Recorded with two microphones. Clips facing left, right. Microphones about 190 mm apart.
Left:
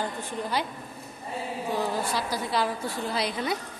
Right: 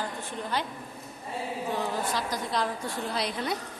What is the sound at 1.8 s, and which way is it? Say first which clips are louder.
A woman's voice: left 3 dB; 10° left (ahead or behind).